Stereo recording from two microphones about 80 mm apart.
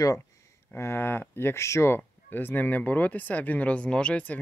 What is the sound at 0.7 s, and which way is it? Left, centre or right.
Speech, left.